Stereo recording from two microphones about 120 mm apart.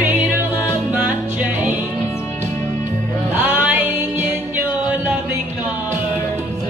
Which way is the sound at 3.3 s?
15° right (ahead or behind).